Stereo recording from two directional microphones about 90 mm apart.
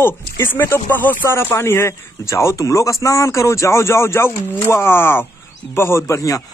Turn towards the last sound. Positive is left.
turn(degrees=40)  # may be behind; listen again after turning